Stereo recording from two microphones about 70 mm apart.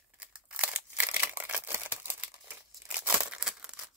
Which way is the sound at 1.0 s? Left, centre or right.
Right.